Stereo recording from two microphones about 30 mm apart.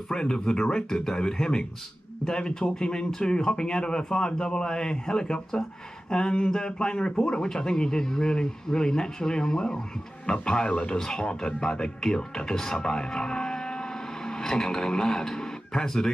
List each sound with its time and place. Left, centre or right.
0.1 s a man's voice: left
0.8 s a man's voice: centre; by 7.2 s left
7.2 s a man's voice: centre
11.0 s speech: centre
11.2 s a man's voice: left